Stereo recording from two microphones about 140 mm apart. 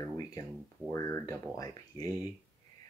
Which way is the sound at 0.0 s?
25° left (ahead or behind).